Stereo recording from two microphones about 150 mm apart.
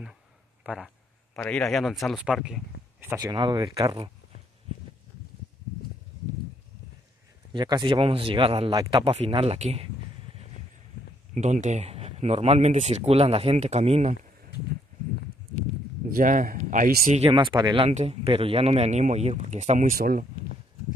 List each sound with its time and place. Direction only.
0.7 s a sound: centre (ahead or behind)
1.4 s speech: 5° left (ahead or behind)
3.2 s speech: 30° right (ahead or behind)
7.5 s speech: 30° right (ahead or behind)
11.3 s speech: 55° right (ahead or behind)
16.1 s speech: 65° right (ahead or behind)
17.2 s speech: 35° right (ahead or behind)
17.8 s speech: 45° right (ahead or behind); by 20.2 s 70° right (ahead or behind)